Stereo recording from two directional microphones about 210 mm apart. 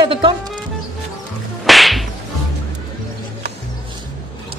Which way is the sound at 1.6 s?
Centre (ahead or behind).